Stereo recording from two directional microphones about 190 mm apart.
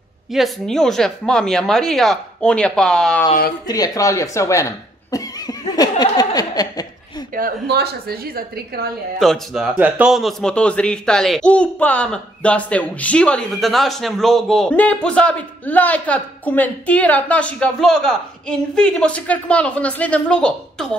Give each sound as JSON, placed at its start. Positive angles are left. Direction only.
{"t": 0.3, "sound": "speech", "side_deg": 0}
{"t": 3.6, "sound": "a sound", "side_deg": 20}
{"t": 7.3, "sound": "a woman's voice", "side_deg": -55}
{"t": 9.2, "sound": "speech", "side_deg": 0}